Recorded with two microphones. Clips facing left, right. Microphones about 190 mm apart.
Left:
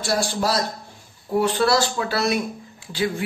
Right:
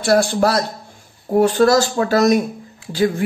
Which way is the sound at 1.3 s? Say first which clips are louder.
Right 6 dB; 45° right (ahead or behind).